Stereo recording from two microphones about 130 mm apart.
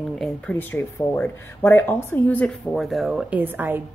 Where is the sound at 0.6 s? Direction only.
15° left (ahead or behind).